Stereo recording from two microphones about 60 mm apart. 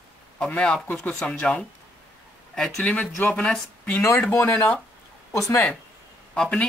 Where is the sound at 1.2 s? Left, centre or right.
Centre.